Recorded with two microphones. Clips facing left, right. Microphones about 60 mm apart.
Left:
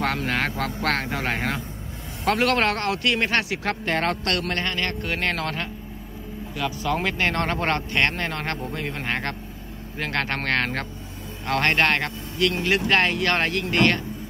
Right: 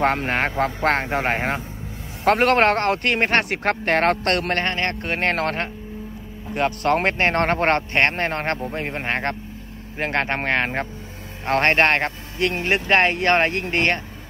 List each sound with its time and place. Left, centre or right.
0.0 s a man's voice: right
11.4 s a man's voice: right